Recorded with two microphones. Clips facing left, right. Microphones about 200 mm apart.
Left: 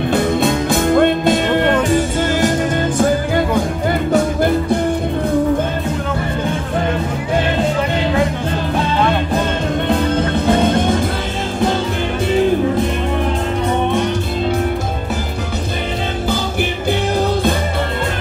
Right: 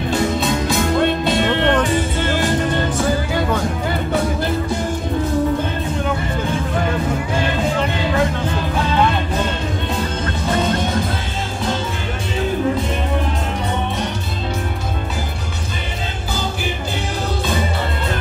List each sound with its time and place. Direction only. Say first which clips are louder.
0.1 s music: left 3 dB; 55° left (ahead or behind)
4.1 s music: left 6 dB; 50° left (ahead or behind)